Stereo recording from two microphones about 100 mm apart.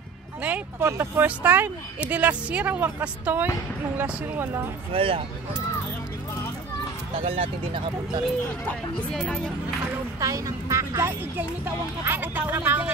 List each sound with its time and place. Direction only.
0.4 s a woman's voice: 10° right (ahead or behind)
0.7 s a woman's voice: 25° right (ahead or behind)
4.9 s speech: 65° right (ahead or behind)
7.2 s speech: 70° right (ahead or behind)
9.1 s speech: 5° left (ahead or behind)
10.2 s speech: 35° right (ahead or behind); by 12.9 s 15° right (ahead or behind)